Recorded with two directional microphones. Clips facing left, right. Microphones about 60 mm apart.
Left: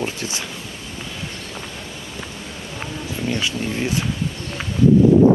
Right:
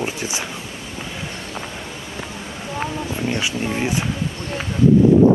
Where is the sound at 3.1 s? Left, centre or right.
Right.